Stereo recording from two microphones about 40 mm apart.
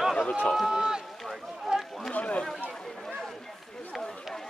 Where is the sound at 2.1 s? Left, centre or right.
Left.